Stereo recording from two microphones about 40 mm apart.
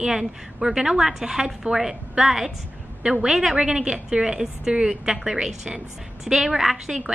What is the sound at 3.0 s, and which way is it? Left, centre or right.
A woman's voice, centre.